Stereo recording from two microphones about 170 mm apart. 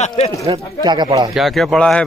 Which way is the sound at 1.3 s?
Centre (ahead or behind).